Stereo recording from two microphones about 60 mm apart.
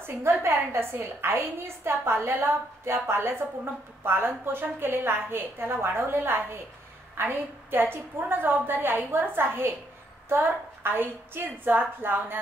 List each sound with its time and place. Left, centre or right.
0.0 s a woman's voice: right